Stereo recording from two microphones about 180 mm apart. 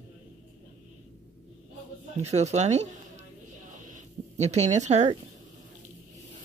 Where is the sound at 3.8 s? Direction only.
40° right (ahead or behind).